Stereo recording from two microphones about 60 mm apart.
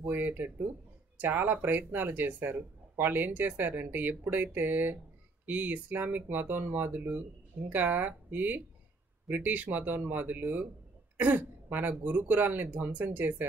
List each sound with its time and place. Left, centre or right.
0.0 s speech: right